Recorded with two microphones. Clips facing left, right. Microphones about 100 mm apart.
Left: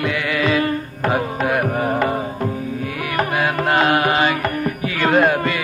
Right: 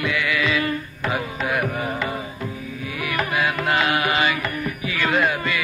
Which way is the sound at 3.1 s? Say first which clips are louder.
Left 4 dB; 45° left (ahead or behind).